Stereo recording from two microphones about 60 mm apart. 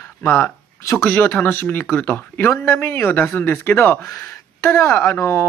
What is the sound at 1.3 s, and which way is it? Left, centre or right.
A man's voice, left.